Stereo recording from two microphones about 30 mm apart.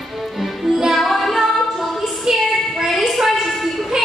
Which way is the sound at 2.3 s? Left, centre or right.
Centre.